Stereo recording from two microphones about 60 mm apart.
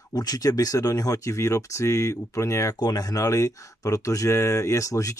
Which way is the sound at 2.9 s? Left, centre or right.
Left.